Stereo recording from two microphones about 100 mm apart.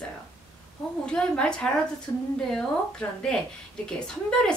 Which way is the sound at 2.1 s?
25° left (ahead or behind).